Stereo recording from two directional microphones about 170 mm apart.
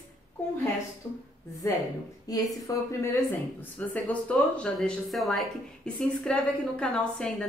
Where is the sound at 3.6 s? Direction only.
10° left (ahead or behind).